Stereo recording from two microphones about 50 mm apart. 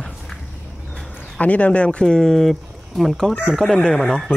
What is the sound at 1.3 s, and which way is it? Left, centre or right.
Speech, left.